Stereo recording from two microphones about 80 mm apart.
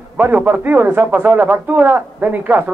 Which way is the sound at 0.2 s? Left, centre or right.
Right.